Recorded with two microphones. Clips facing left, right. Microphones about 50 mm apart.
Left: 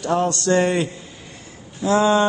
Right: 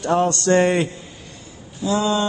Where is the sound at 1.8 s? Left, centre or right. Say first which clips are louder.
Left 4 dB; left.